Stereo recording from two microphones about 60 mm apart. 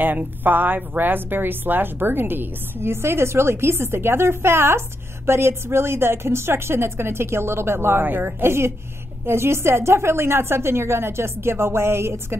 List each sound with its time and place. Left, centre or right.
0.0 s a woman's voice: right
8.0 s a woman's voice: right